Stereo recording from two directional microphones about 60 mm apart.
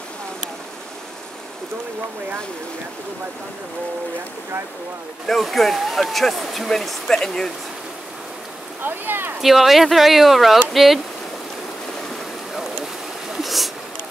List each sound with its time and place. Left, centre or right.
5.3 s speech: centre
8.8 s speech: right
9.4 s speech: centre
13.4 s a sound: centre